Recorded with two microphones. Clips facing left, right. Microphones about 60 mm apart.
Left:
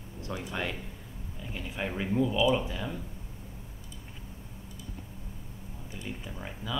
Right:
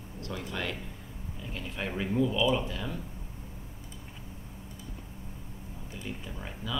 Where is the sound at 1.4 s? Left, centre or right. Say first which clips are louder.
Left 1 dB; centre.